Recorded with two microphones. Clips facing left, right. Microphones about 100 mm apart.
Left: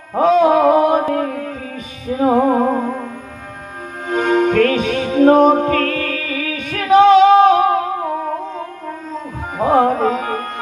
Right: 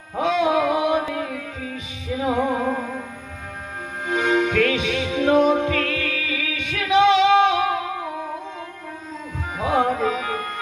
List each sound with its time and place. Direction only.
0.1 s music: 45° left (ahead or behind)
4.1 s music: 45° left (ahead or behind)